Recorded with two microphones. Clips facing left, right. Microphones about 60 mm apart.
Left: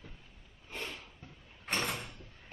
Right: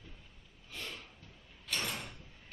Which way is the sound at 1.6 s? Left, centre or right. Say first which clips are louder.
Left 4 dB; left.